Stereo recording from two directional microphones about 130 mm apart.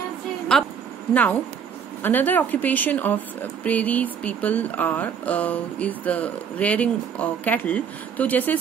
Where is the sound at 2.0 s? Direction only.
15° left (ahead or behind).